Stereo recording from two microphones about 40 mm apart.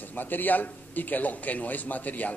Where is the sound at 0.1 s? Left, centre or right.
Left.